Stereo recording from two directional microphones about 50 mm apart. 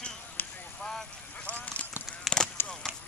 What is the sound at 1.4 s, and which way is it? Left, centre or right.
Clip-clop, left.